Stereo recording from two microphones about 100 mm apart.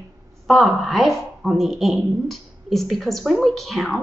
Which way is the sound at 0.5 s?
Centre (ahead or behind).